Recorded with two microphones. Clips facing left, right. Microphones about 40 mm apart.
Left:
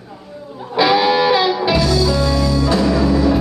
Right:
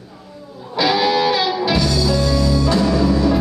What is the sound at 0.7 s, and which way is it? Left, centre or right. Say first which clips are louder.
Music: left 3 dB; centre.